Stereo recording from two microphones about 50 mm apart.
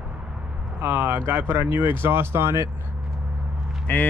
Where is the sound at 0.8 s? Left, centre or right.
Right.